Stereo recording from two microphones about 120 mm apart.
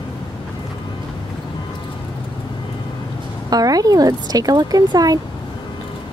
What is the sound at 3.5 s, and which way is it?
Speech, 30° right (ahead or behind).